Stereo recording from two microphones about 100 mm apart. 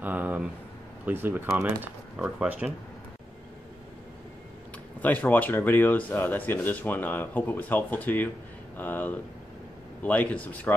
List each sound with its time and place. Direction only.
0.0 s a sound: 15° right (ahead or behind)
1.0 s speech: 20° right (ahead or behind)
1.6 s speech: 10° right (ahead or behind)
5.0 s speech: 15° left (ahead or behind)